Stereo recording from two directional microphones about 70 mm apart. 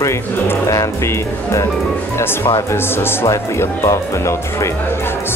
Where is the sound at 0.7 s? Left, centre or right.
Left.